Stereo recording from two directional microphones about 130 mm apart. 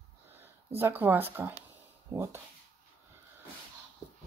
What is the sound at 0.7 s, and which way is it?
Speech, 15° right (ahead or behind).